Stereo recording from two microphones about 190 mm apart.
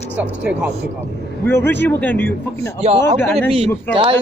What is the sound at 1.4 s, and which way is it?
Speech, 10° left (ahead or behind).